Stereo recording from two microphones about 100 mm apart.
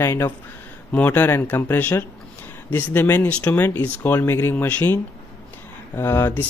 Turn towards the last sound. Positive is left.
turn(degrees=20)  # may be behind; listen again after turning